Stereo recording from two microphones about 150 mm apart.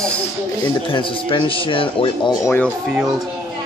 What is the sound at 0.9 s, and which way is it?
A man's voice, 35° left (ahead or behind).